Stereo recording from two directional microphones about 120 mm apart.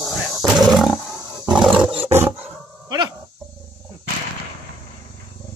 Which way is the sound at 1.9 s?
55° right (ahead or behind).